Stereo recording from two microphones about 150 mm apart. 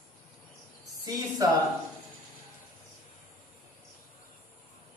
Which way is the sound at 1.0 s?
25° right (ahead or behind).